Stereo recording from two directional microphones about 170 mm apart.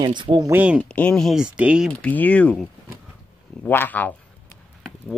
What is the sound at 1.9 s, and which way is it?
Speech, 5° left (ahead or behind).